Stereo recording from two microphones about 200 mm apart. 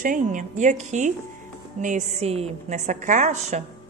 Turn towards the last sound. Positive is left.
turn(degrees=-35)  # may be behind; listen again after turning